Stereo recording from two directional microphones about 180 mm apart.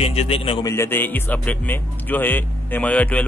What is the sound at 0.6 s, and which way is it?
Speech, 15° left (ahead or behind).